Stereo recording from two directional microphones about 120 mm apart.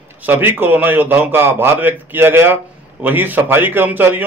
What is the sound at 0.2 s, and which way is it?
A man's voice, 15° right (ahead or behind).